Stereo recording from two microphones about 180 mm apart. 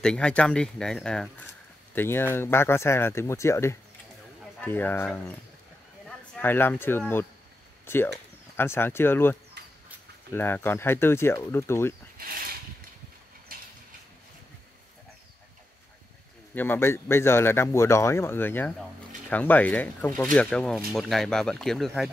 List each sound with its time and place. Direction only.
0.0 s speech: 5° left (ahead or behind)
12.2 s a sound: 55° right (ahead or behind)
16.5 s speech: 10° left (ahead or behind)